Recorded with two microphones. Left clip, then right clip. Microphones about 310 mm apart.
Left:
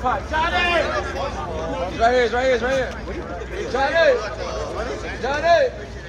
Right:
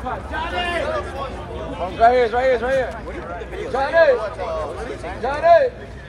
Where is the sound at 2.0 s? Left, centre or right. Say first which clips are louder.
Right 3 dB; right.